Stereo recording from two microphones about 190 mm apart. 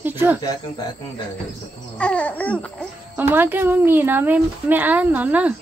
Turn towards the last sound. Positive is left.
turn(degrees=-10)  # may be behind; listen again after turning